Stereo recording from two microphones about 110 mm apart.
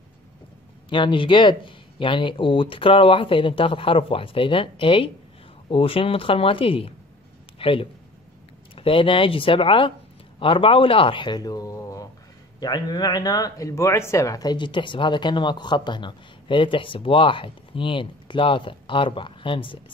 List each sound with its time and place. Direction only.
0.8 s speech: 50° left (ahead or behind)